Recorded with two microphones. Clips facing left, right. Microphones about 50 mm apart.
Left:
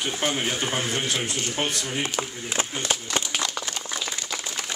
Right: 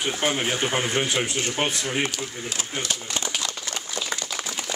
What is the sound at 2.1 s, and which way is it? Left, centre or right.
Speech, left.